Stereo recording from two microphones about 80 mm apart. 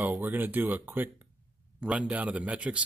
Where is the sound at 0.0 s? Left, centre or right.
Right.